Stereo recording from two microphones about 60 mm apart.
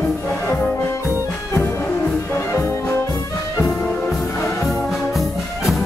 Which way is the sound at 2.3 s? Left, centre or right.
Left.